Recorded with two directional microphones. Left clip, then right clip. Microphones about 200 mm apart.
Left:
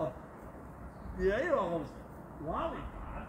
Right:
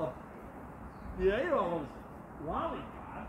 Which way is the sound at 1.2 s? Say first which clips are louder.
Right 1 dB; 15° left (ahead or behind).